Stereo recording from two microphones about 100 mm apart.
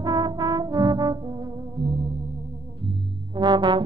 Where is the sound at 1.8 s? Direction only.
55° right (ahead or behind).